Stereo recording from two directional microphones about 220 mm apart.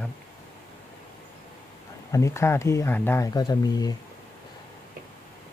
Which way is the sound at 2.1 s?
15° left (ahead or behind).